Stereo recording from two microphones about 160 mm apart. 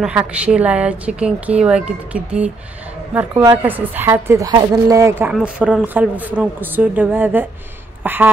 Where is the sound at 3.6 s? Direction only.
10° right (ahead or behind).